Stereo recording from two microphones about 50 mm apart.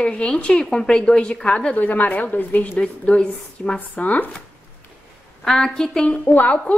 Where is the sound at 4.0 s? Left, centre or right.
Left.